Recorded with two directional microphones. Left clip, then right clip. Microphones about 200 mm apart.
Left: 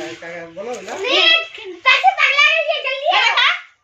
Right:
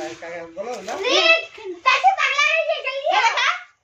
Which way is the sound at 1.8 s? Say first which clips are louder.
Left 3 dB; 40° left (ahead or behind).